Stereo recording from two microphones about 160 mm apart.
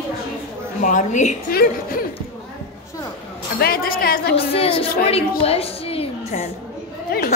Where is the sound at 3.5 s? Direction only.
70° left (ahead or behind); by 4.5 s 85° left.